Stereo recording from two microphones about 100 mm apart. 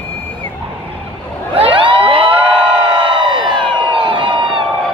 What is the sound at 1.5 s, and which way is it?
Crowd, 60° right (ahead or behind).